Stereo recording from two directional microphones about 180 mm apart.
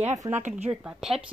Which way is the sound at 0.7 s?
5° right (ahead or behind).